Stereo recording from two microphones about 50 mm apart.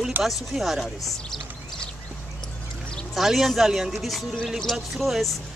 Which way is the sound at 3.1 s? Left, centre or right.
Centre.